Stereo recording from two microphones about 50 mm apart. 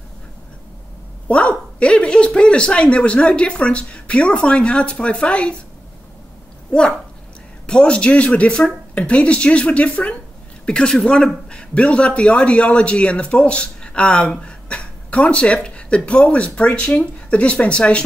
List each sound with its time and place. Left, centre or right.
1.3 s a man's voice: left
6.7 s a man's voice: centre